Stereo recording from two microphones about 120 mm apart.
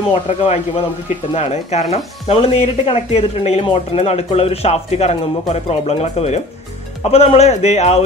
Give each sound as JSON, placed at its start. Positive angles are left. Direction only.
{"t": 0.1, "sound": "speech", "side_deg": 55}